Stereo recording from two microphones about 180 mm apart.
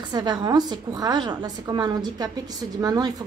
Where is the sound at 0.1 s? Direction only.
25° right (ahead or behind).